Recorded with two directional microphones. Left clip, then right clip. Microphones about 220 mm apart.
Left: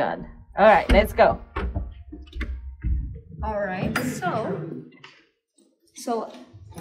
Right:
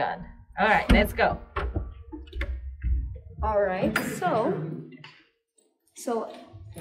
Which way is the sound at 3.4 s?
45° right (ahead or behind).